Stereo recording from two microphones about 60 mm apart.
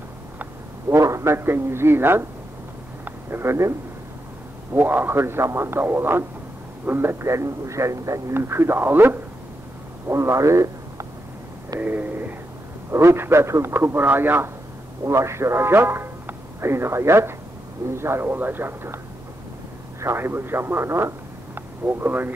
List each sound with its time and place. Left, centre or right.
0.8 s a man's voice: right
4.7 s a man's voice: right
8.3 s a man's voice: right
10.0 s a man's voice: right
11.8 s a sound: right
12.9 s speech: right
15.0 s a man's voice: right
20.0 s speech: right